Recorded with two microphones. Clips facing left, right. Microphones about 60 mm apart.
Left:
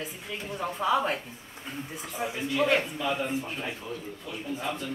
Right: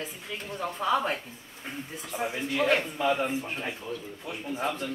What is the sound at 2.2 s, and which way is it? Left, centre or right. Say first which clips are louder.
Speech: left 1 dB; right.